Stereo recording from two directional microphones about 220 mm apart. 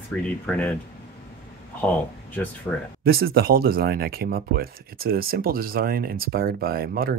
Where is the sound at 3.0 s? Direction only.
45° right (ahead or behind).